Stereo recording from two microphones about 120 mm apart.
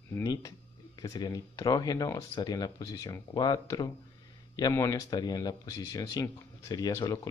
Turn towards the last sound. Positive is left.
turn(degrees=25)  # may be behind; listen again after turning